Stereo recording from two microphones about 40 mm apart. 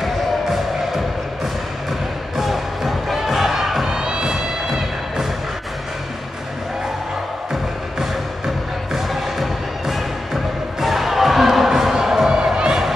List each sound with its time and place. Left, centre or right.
0.0 s music: centre
2.3 s music: centre
3.9 s music: centre
8.9 s music: centre
12.5 s crowd: right